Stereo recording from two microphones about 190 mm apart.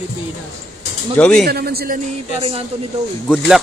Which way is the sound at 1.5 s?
55° right (ahead or behind).